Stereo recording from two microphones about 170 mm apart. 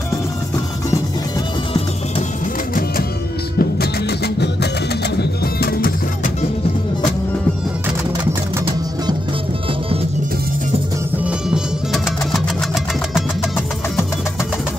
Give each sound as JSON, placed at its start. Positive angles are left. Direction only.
{"t": 3.5, "sound": "music", "side_deg": 70}
{"t": 11.2, "sound": "music", "side_deg": -5}